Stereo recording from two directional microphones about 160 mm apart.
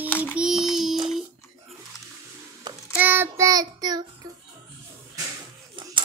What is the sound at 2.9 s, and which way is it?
Child singing, 10° right (ahead or behind).